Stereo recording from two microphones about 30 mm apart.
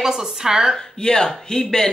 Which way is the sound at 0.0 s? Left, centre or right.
Centre.